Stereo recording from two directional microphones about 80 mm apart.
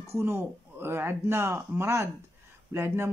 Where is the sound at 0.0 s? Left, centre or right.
Right.